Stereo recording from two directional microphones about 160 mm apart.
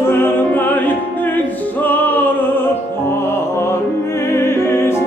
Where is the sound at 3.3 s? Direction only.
15° left (ahead or behind).